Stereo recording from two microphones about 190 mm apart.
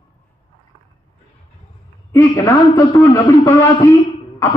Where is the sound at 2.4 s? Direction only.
15° left (ahead or behind).